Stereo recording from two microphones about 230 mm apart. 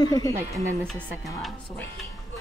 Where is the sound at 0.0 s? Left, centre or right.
Centre.